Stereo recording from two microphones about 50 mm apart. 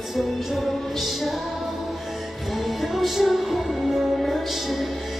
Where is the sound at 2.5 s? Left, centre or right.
Centre.